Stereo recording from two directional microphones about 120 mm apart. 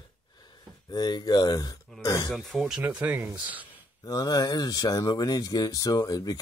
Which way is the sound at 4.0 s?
35° left (ahead or behind).